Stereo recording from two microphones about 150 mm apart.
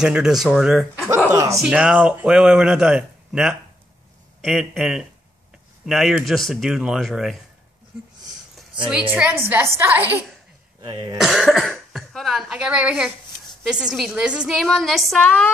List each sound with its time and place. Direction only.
0.0 s a man's voice: 5° right (ahead or behind)
1.1 s speech: 20° right (ahead or behind)
1.6 s a man's voice: 5° right (ahead or behind)
9.1 s a woman's voice: 10° right (ahead or behind)
10.8 s speech: 30° right (ahead or behind)
11.1 s a man's voice: centre (ahead or behind)